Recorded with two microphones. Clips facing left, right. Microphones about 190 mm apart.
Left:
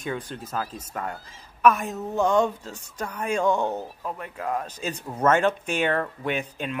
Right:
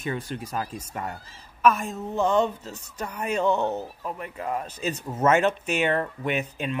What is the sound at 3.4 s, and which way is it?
Speech, 10° left (ahead or behind).